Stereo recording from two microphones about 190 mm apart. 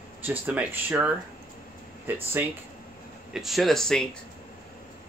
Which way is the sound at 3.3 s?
Centre (ahead or behind).